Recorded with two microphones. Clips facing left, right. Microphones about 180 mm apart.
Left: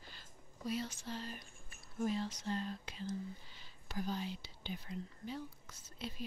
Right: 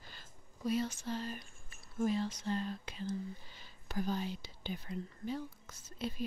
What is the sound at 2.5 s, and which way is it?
Whispering, 70° right (ahead or behind).